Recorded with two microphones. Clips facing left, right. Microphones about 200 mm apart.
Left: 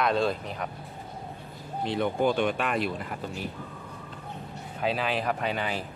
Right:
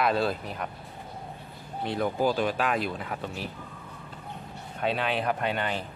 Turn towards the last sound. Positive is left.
turn(degrees=0)  # may be behind; listen again after turning